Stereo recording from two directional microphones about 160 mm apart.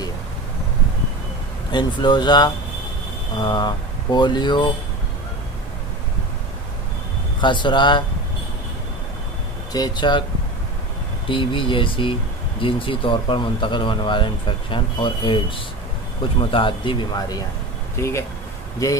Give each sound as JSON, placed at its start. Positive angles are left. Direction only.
{"t": 1.7, "sound": "speech", "side_deg": 30}
{"t": 7.4, "sound": "speech", "side_deg": 30}
{"t": 9.7, "sound": "speech", "side_deg": 25}
{"t": 11.2, "sound": "speech", "side_deg": 30}
{"t": 18.0, "sound": "speech", "side_deg": 15}